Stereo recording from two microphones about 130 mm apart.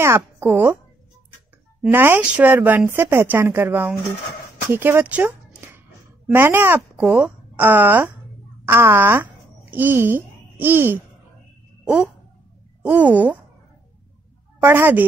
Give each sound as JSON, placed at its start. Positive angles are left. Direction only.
{"t": 0.0, "sound": "speech", "side_deg": -20}
{"t": 1.8, "sound": "speech", "side_deg": -15}
{"t": 11.8, "sound": "a sound", "side_deg": -5}
{"t": 12.8, "sound": "speech", "side_deg": -10}
{"t": 14.6, "sound": "speech", "side_deg": -15}